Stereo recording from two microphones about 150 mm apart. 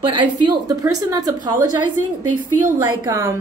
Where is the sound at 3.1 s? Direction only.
20° right (ahead or behind).